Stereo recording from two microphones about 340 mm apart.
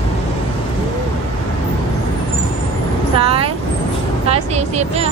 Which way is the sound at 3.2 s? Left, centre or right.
Centre.